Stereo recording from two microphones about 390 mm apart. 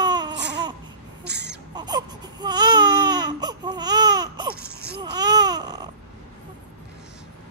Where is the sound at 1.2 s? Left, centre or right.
Right.